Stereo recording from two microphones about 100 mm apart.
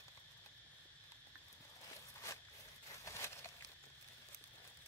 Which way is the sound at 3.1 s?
25° left (ahead or behind).